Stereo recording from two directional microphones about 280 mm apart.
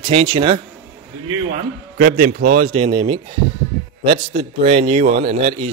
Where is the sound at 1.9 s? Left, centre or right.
Right.